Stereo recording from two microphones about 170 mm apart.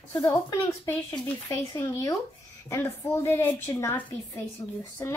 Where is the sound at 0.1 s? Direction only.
20° left (ahead or behind).